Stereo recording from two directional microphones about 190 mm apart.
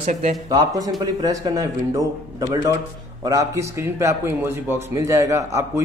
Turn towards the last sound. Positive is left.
turn(degrees=-15)  # may be behind; listen again after turning